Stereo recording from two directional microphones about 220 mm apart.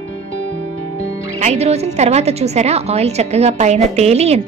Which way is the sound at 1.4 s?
30° right (ahead or behind).